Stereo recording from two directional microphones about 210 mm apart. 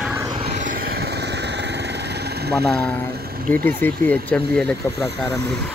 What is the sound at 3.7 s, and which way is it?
Speech, 10° left (ahead or behind).